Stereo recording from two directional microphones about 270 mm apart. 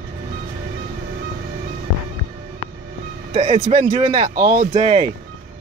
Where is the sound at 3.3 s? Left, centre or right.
Right.